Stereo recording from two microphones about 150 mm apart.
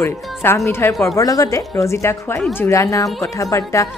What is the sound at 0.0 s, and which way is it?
A woman's voice, 15° left (ahead or behind).